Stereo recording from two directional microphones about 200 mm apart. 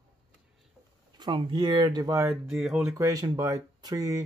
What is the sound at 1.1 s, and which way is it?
Speech, 25° right (ahead or behind).